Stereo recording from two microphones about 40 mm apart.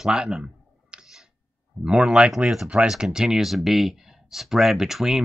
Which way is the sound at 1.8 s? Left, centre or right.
Centre.